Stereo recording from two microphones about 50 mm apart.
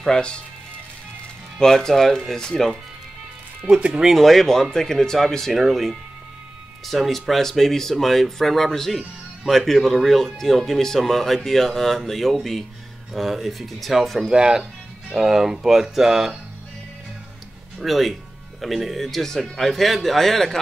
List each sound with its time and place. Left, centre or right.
0.0 s speech: centre
1.6 s speech: centre
3.7 s speech: centre
4.0 s speech: centre
14.3 s speech: centre
17.7 s speech: centre